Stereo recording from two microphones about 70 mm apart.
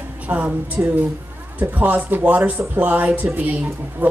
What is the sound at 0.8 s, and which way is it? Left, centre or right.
A man's voice, right.